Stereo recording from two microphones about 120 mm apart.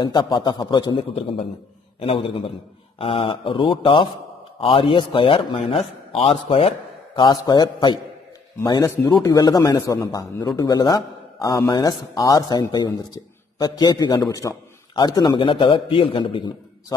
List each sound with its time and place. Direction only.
0.0 s a man's voice: 40° left (ahead or behind)
1.1 s a man's voice: 60° left (ahead or behind)
7.2 s a man's voice: 35° left (ahead or behind)
9.2 s a man's voice: 30° left (ahead or behind)